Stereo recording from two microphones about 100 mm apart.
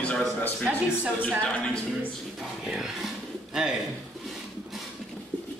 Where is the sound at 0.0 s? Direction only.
10° left (ahead or behind).